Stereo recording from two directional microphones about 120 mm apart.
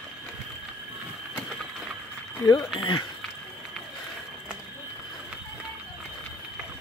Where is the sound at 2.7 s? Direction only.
45° left (ahead or behind).